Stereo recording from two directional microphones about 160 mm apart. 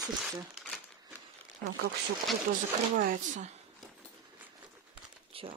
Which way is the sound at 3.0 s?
55° right (ahead or behind).